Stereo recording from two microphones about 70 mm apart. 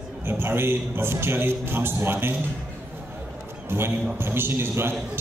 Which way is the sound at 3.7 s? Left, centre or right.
Right.